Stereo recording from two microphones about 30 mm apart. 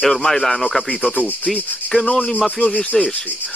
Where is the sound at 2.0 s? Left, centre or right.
Left.